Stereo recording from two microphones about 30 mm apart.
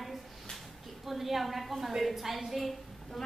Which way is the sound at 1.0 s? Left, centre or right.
Centre.